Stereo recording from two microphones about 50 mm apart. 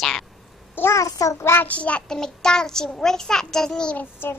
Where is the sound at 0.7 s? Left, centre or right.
Left.